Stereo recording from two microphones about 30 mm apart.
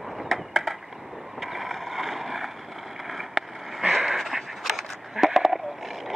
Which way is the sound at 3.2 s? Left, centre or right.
Centre.